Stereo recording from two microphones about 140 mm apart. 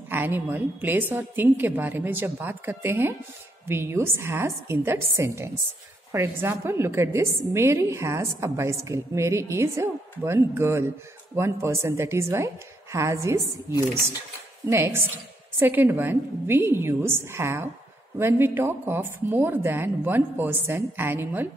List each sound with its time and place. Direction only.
0.1 s a woman's voice: 15° right (ahead or behind)
14.7 s a woman's voice: 20° right (ahead or behind)